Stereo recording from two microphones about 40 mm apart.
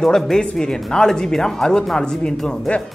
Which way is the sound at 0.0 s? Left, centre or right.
Centre.